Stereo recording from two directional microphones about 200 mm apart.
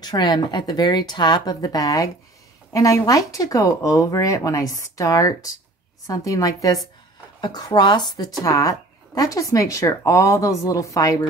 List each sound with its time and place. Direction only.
0.0 s a woman's voice: 20° left (ahead or behind)